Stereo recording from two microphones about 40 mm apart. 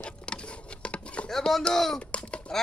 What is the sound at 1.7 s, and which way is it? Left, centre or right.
Speech, centre.